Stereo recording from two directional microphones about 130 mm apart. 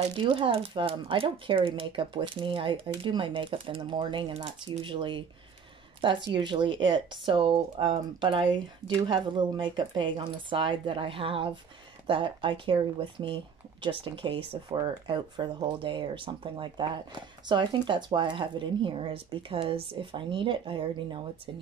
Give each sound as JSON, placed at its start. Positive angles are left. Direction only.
{"t": 0.2, "sound": "speech", "side_deg": -40}
{"t": 14.7, "sound": "speech", "side_deg": -35}